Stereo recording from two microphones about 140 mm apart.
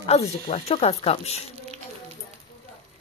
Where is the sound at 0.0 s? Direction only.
45° left (ahead or behind).